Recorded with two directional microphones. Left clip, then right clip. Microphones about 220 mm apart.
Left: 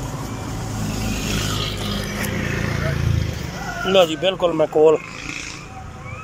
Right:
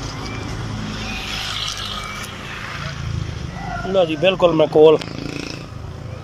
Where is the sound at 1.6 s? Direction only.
40° left (ahead or behind).